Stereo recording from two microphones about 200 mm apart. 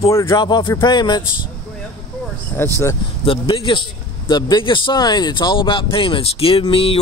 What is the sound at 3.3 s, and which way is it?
Speech, 25° left (ahead or behind).